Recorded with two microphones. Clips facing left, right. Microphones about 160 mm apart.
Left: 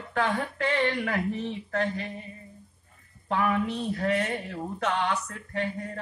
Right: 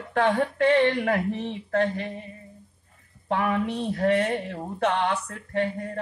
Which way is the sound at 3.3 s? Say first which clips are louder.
Right 1 dB; 45° right (ahead or behind).